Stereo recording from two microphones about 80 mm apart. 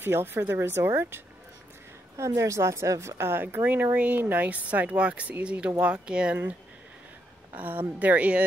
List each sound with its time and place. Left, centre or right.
0.0 s a woman's voice: right
7.5 s a woman's voice: right